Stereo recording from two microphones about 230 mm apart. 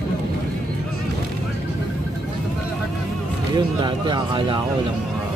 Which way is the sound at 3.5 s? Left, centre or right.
Centre.